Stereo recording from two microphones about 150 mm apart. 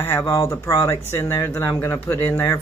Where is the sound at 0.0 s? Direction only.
15° left (ahead or behind).